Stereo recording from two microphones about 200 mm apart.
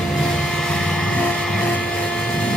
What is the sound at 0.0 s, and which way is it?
Vehicle, centre (ahead or behind).